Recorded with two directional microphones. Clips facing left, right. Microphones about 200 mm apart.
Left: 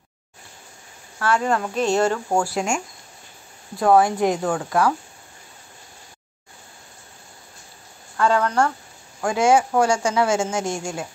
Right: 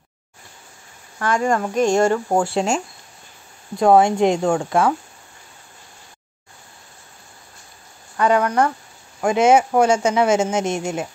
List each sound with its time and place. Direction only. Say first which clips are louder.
1.5 s speech: right 3 dB; 10° right (ahead or behind)
8.2 s speech: right 2 dB; 15° right (ahead or behind)